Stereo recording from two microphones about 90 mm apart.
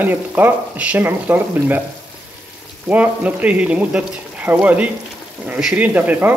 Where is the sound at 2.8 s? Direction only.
15° right (ahead or behind).